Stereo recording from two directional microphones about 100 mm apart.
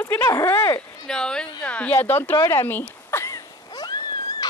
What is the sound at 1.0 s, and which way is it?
Speech, 5° left (ahead or behind).